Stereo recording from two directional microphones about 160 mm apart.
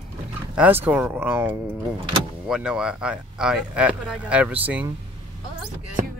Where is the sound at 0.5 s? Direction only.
10° right (ahead or behind).